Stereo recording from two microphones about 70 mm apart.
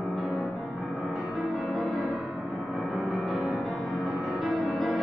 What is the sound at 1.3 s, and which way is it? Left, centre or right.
Music, centre.